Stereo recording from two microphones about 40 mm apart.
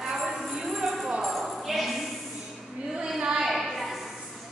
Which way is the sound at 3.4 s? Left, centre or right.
Centre.